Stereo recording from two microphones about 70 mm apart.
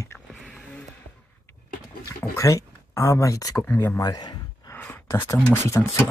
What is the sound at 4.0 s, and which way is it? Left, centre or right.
Speech, left.